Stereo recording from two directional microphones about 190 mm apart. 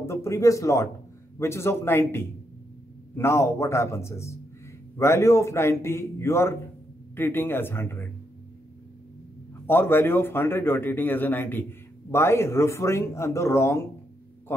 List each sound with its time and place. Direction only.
0.0 s a man's voice: 15° left (ahead or behind)
9.7 s a man's voice: 10° left (ahead or behind)